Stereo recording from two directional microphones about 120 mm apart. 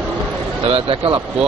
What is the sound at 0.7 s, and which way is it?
Speech, 55° right (ahead or behind).